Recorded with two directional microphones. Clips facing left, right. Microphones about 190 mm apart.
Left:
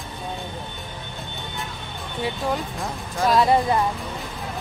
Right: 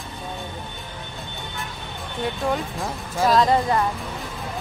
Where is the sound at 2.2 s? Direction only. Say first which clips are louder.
Right 1 dB; centre (ahead or behind).